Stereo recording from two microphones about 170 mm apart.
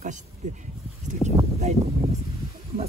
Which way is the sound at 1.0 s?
45° right (ahead or behind).